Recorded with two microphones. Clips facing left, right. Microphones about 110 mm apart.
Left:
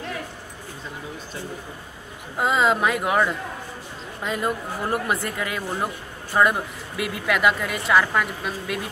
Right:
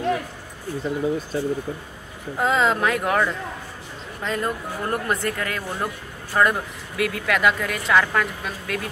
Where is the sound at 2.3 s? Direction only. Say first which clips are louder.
Even; 5° left (ahead or behind).